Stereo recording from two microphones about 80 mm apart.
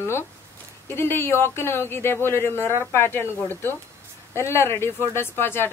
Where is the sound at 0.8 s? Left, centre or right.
Left.